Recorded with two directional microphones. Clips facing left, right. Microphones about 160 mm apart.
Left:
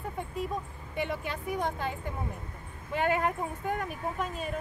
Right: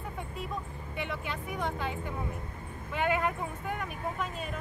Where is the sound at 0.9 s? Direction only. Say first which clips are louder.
Left 4 dB; 40° left (ahead or behind).